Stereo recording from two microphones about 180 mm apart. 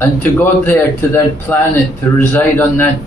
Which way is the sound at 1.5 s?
10° left (ahead or behind).